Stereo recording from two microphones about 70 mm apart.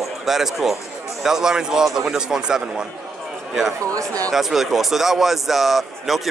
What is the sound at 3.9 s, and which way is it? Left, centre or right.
Speech, right.